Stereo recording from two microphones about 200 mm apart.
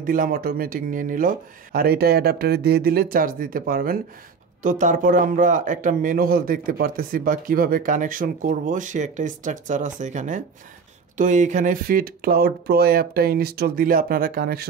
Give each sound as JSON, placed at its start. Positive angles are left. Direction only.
{"t": 0.0, "sound": "speech", "side_deg": -45}